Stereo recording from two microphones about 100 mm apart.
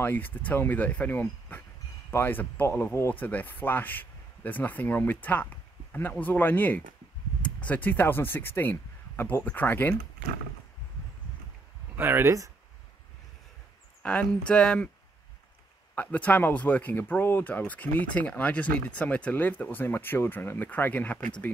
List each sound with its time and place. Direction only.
0.0 s speech: 20° left (ahead or behind)
12.0 s speech: 20° right (ahead or behind)
14.0 s speech: 10° left (ahead or behind)
15.9 s speech: 15° left (ahead or behind)